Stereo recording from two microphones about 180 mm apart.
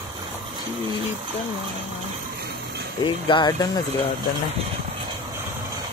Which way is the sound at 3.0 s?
25° left (ahead or behind).